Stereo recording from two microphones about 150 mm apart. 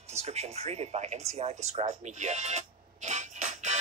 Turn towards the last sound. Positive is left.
turn(degrees=-50)  # may be behind; listen again after turning